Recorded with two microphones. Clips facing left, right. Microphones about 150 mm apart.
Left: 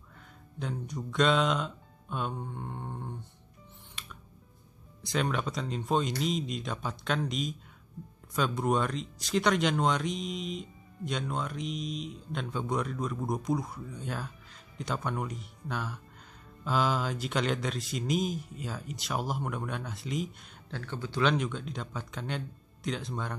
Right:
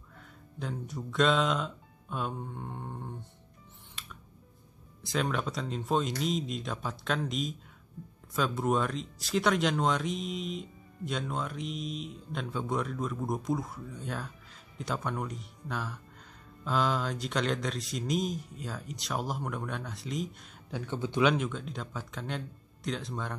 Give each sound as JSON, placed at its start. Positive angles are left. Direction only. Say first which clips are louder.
{"t": 0.6, "sound": "speech", "louder": "left 1 dB", "side_deg": 0}
{"t": 4.0, "sound": "music", "louder": "left 1 dB", "side_deg": 0}
{"t": 5.0, "sound": "speech", "louder": "even", "side_deg": 0}
{"t": 20.7, "sound": "speech", "louder": "right 3 dB", "side_deg": -15}
{"t": 21.3, "sound": "speech", "louder": "even", "side_deg": 0}